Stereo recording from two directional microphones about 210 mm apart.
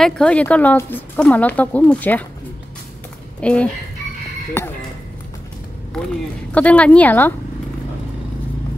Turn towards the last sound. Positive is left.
turn(degrees=10)  # may be behind; listen again after turning